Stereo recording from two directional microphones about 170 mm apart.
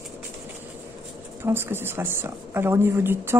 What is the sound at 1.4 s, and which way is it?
A woman's voice, 15° right (ahead or behind).